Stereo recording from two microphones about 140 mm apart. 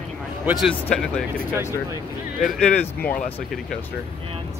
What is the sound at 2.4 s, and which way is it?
Speech, 5° left (ahead or behind).